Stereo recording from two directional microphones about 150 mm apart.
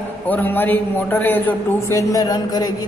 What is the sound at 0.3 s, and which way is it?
A woman's voice, 10° left (ahead or behind).